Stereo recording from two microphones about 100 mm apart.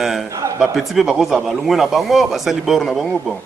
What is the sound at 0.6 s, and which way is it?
Speech, centre (ahead or behind).